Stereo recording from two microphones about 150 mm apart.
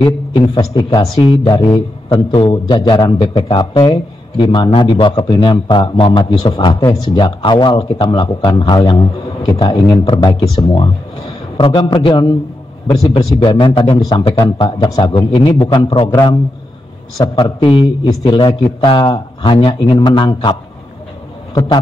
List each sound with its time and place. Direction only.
0.6 s a man's voice: 35° left (ahead or behind)
17.2 s a man's voice: 35° left (ahead or behind)